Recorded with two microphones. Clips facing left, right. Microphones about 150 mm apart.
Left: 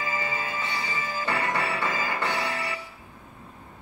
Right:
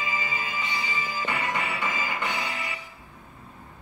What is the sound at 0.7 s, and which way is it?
Music, 15° right (ahead or behind).